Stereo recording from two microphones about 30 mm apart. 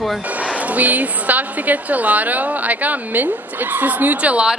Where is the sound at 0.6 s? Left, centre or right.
Right.